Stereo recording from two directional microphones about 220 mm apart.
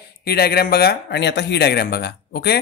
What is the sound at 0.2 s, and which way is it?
Speech, 45° left (ahead or behind).